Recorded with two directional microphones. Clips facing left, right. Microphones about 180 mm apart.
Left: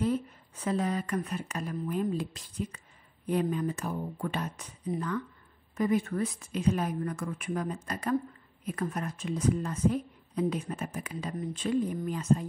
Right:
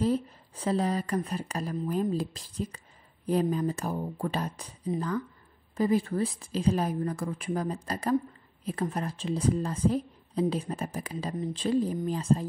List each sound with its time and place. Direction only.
0.0 s speech: 35° right (ahead or behind)